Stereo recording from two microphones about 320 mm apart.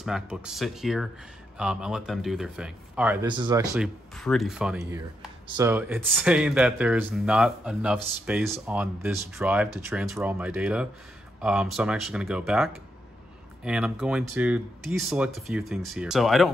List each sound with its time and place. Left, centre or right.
0.0 s speech: centre